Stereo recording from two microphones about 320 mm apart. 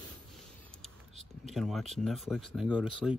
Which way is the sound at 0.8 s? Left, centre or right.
Centre.